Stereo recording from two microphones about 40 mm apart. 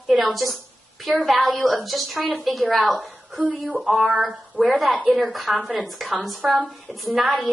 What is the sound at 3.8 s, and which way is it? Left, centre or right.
Speech, right.